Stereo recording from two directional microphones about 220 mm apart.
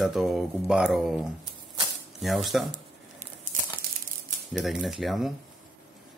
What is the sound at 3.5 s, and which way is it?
Crumpling, 40° right (ahead or behind).